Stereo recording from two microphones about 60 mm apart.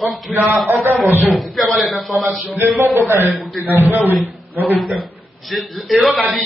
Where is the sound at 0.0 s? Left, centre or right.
Centre.